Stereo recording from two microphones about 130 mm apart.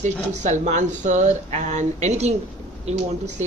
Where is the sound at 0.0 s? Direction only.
65° right (ahead or behind).